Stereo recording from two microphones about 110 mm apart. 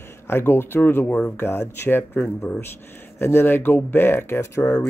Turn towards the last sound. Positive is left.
turn(degrees=25)  # may be behind; listen again after turning